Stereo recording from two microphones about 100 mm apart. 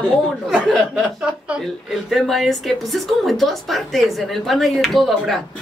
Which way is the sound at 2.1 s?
Centre (ahead or behind).